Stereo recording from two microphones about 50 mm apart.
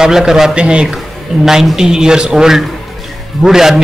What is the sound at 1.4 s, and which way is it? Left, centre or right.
A man's voice, centre.